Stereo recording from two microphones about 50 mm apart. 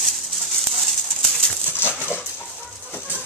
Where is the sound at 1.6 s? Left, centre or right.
Left.